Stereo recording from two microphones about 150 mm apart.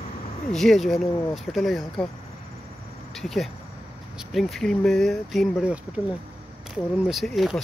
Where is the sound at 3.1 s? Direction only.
Centre (ahead or behind).